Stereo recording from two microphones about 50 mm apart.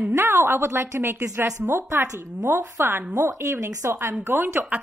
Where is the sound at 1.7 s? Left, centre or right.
Right.